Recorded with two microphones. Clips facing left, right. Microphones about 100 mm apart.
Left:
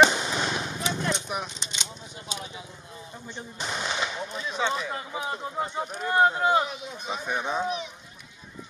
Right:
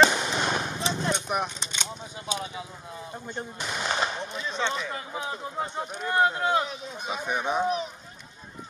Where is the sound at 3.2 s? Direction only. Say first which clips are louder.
Even; 45° right (ahead or behind).